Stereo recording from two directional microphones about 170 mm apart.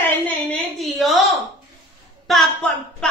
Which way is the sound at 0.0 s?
10° left (ahead or behind).